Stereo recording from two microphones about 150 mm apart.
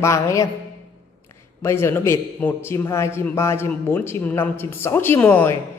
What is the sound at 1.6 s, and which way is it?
A man's voice, 15° left (ahead or behind).